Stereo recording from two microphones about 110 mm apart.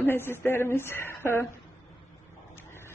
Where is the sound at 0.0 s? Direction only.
20° left (ahead or behind).